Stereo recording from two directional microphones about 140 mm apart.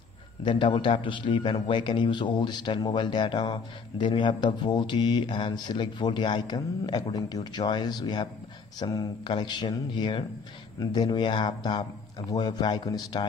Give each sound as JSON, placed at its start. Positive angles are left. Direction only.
{"t": 0.4, "sound": "speech", "side_deg": 35}